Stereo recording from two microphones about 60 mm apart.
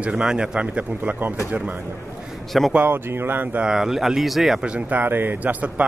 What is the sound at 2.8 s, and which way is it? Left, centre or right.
Speech, right.